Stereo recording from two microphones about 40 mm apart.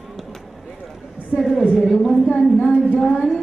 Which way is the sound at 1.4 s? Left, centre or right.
Centre.